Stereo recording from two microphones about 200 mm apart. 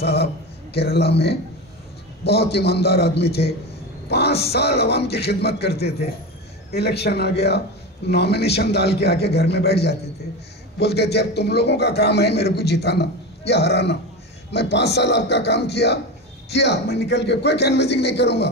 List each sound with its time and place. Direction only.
0.0 s a man's voice: 55° left (ahead or behind)
5.8 s speech: 30° left (ahead or behind)
6.7 s a man's voice: 55° left (ahead or behind)